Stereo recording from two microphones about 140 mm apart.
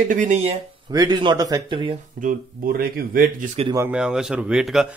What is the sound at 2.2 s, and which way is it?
Speech, 80° right.